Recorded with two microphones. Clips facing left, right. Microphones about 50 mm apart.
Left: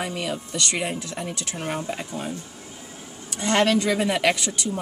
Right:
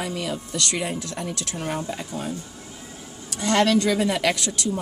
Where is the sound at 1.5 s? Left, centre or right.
Left.